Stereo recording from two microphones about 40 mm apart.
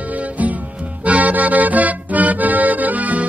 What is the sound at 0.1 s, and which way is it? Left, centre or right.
Music, right.